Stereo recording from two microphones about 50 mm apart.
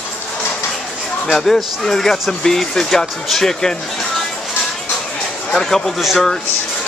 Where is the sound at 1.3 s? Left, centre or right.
Centre.